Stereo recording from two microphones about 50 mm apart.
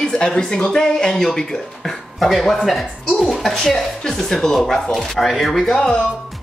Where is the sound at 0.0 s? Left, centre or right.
Centre.